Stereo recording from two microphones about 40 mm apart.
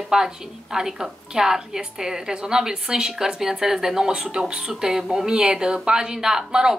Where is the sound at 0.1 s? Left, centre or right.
Centre.